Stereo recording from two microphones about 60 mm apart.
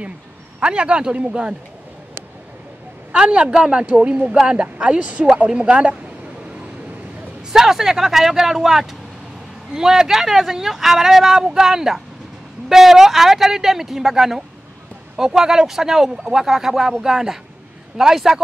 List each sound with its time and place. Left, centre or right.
0.6 s speech: centre
3.1 s a woman's voice: centre
7.5 s a woman's voice: centre